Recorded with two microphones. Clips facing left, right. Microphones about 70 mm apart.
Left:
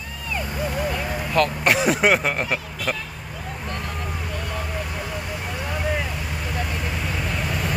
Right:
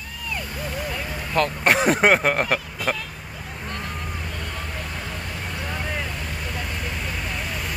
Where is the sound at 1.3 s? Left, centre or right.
Right.